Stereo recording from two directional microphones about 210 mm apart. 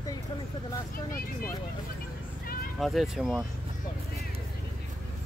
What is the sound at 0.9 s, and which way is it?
Speech, 40° left (ahead or behind).